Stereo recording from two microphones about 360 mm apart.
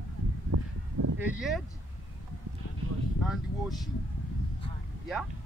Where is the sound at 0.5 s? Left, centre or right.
Right.